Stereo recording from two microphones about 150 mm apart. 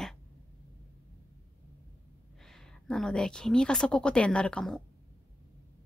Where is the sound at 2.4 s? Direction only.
5° left (ahead or behind).